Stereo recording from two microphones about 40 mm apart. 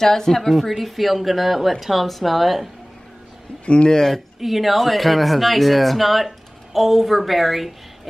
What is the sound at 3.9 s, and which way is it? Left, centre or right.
Speech, centre.